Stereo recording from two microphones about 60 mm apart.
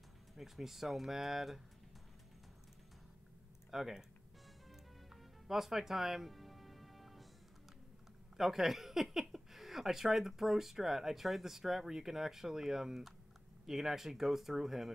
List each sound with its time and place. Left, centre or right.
0.4 s speech: centre
3.7 s speech: centre
5.1 s music: centre
8.4 s speech: centre